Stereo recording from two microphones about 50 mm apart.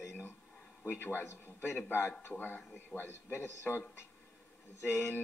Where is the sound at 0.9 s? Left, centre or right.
Left.